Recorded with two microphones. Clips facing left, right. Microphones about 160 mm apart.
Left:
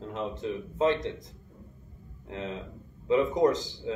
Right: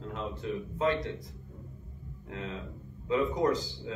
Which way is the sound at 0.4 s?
20° left (ahead or behind).